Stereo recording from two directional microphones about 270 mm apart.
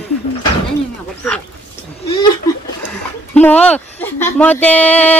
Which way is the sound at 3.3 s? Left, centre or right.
Centre.